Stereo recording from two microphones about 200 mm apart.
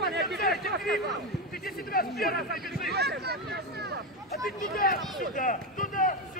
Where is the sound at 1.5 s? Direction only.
50° left (ahead or behind).